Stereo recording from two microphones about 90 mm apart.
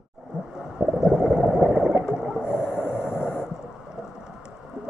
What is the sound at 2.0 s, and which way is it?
Snort, 5° right (ahead or behind).